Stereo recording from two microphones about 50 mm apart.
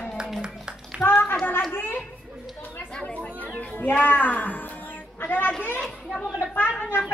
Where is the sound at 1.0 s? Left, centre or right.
Left.